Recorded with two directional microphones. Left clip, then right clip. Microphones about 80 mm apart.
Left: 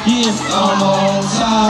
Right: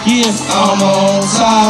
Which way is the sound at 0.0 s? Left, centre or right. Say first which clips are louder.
Right 2 dB; right.